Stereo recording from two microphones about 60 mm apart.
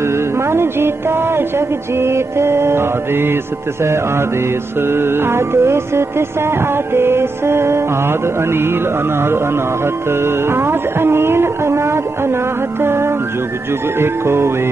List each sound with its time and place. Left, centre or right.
0.0 s music: right
2.0 s mantra: right
4.8 s music: right
10.2 s music: right
12.8 s mantra: right